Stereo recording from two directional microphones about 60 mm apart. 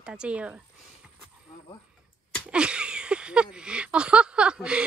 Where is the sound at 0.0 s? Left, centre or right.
Centre.